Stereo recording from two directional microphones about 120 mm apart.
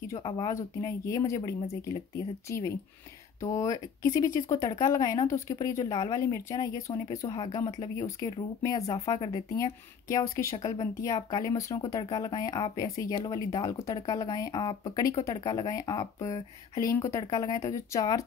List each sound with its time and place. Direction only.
0.0 s speech: 25° left (ahead or behind)